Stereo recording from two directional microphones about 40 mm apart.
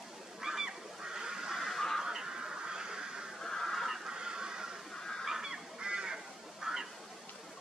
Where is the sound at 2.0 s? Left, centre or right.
Centre.